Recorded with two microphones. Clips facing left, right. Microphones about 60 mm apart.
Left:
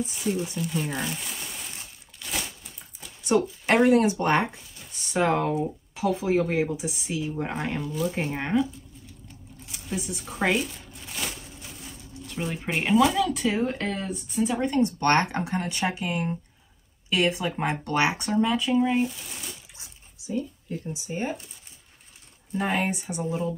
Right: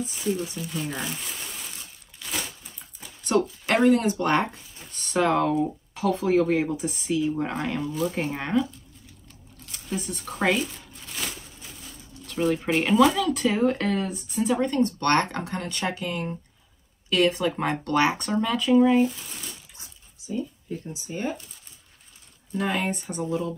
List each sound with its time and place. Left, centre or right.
0.1 s speech: centre
2.1 s a sound: centre
3.3 s speech: left
7.9 s speech: centre
8.4 s speech: centre
9.7 s crumpling: centre
12.3 s speech: centre
14.6 s speech: centre
21.1 s speech: left
22.6 s speech: left